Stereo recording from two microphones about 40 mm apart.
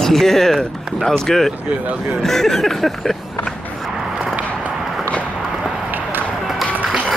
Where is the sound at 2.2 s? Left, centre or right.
Centre.